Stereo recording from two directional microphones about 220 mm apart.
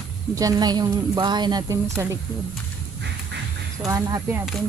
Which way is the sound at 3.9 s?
15° right (ahead or behind).